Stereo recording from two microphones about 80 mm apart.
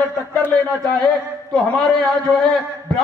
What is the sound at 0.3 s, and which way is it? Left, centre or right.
A man's voice, centre.